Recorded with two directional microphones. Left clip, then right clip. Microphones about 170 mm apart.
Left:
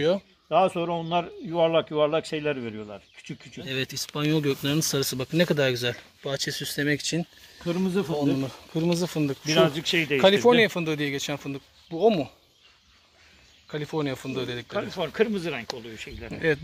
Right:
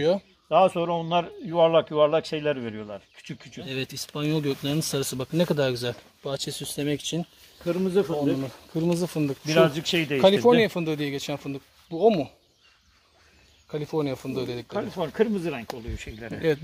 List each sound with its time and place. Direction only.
0.5 s speech: 35° right (ahead or behind)
3.6 s speech: centre (ahead or behind)
8.8 s speech: centre (ahead or behind)
9.7 s speech: 55° right (ahead or behind)
10.1 s speech: 5° right (ahead or behind)
13.7 s speech: 10° right (ahead or behind)
14.8 s speech: 35° right (ahead or behind)
16.0 s speech: 50° right (ahead or behind)